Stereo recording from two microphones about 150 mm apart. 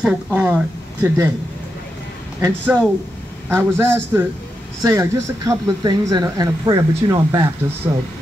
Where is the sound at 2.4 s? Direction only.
15° right (ahead or behind).